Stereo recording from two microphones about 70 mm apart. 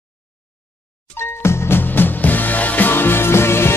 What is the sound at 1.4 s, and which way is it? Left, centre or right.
Music, left.